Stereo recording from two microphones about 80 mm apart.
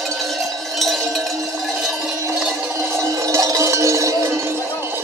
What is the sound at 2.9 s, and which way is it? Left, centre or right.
Cowbell, right.